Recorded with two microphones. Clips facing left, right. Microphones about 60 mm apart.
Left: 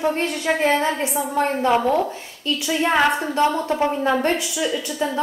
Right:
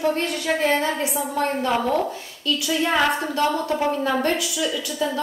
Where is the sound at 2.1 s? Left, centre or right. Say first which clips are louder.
Even; left.